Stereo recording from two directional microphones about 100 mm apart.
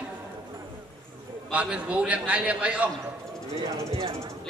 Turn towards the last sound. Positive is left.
turn(degrees=-35)  # may be behind; listen again after turning